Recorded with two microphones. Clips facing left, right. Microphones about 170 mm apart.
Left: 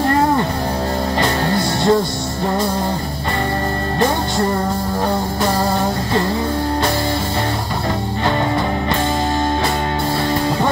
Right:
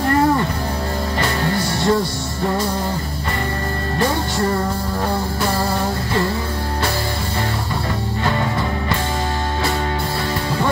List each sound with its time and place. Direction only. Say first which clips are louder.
1.2 s music: left 1 dB; 20° left (ahead or behind)